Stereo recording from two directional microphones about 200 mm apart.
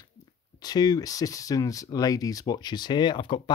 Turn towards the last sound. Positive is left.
turn(degrees=25)  # may be behind; listen again after turning